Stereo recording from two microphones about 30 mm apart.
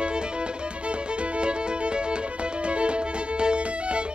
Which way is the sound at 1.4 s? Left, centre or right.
Right.